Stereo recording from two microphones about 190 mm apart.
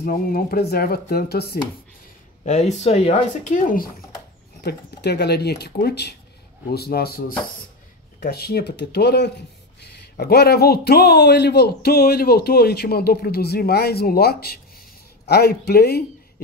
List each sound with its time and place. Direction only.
0.0 s a man's voice: 50° left (ahead or behind)
2.4 s speech: 35° left (ahead or behind)
4.6 s a man's voice: 60° left (ahead or behind)